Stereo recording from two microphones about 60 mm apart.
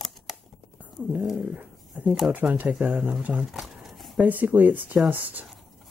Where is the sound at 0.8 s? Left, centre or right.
Right.